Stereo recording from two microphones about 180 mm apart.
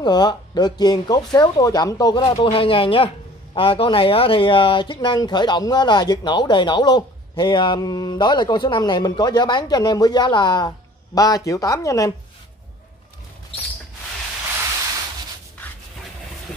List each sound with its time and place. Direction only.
0.0 s speech: 25° left (ahead or behind)